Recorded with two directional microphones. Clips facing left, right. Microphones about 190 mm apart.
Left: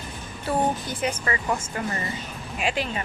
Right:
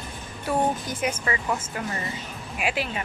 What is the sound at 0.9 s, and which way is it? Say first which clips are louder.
Speech: even; 10° right (ahead or behind).